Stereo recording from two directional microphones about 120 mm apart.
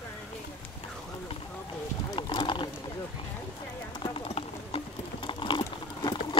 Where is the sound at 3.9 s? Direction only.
45° left (ahead or behind).